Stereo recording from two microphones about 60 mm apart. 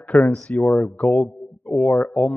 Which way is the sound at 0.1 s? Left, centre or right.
Left.